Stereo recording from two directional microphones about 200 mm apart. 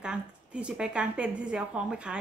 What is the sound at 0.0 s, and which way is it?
A woman's voice, 5° right (ahead or behind).